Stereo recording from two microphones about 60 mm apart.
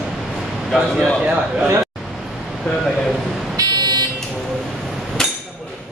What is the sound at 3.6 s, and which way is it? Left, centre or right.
Vehicle, right.